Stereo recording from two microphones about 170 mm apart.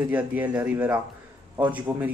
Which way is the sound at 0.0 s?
10° right (ahead or behind).